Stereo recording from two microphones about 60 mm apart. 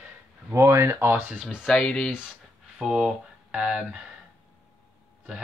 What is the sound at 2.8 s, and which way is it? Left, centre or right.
Speech, centre.